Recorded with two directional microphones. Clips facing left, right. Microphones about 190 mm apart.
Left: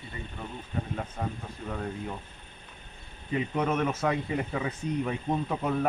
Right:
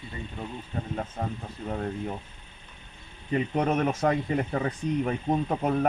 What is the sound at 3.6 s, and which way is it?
Speech, 45° right (ahead or behind).